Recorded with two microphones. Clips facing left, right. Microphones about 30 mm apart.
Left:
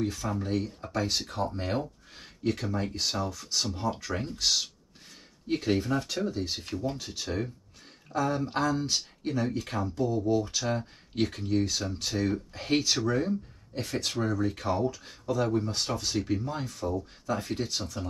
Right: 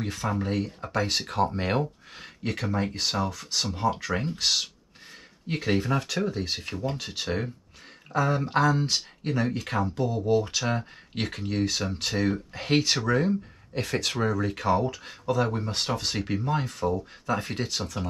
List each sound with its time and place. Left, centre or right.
0.0 s speech: right
5.8 s speech: right
6.1 s speech: right
13.7 s speech: right